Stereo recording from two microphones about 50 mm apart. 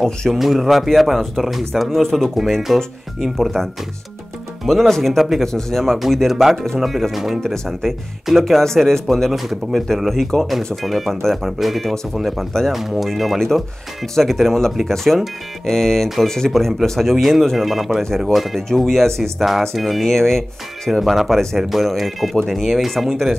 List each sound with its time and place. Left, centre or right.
0.0 s speech: centre
0.4 s speech: centre
4.6 s speech: centre